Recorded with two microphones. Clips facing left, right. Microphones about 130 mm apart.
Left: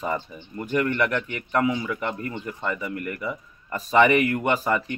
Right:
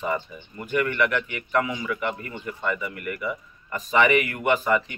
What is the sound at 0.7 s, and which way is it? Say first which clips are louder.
A man's voice: even; 35° left (ahead or behind).